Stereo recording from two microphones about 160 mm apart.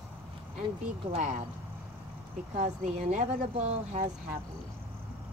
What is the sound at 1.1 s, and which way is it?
Speech, 45° right (ahead or behind).